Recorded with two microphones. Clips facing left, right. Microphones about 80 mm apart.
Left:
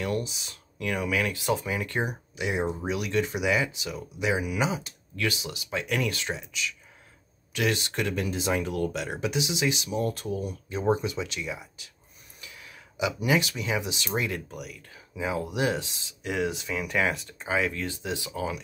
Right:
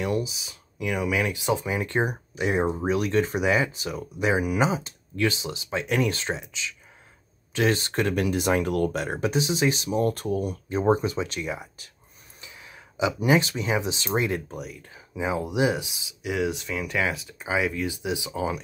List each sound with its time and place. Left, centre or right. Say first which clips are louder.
0.2 s speech: right 4 dB; centre; by 2.0 s right
2.0 s speech: right 4 dB; right
7.5 s speech: right 4 dB; right
8.1 s speech: right 5 dB; right
10.7 s speech: right 4 dB; right
12.4 s speech: right 1 dB; right